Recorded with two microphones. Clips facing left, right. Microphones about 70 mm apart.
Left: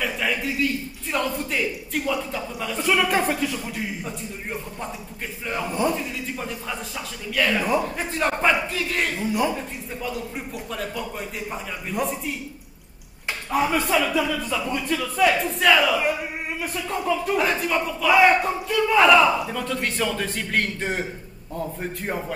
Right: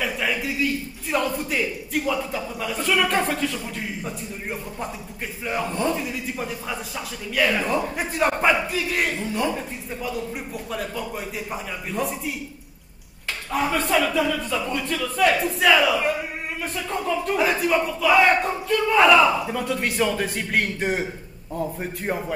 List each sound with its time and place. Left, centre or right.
0.0 s a sound: centre
1.1 s speech: centre
5.7 s speech: centre
5.9 s a man's voice: centre
9.2 s speech: centre
9.6 s speech: centre
13.5 s a man's voice: centre